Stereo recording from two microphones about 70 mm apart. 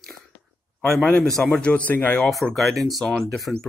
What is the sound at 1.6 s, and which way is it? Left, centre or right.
Speech, left.